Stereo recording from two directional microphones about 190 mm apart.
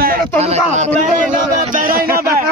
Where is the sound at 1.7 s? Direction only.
50° right (ahead or behind).